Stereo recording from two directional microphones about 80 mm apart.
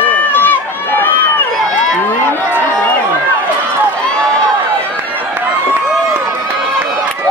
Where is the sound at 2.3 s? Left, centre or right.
Left.